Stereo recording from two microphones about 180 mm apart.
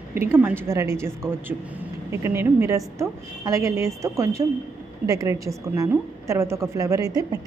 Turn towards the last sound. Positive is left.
turn(degrees=-20)  # may be behind; listen again after turning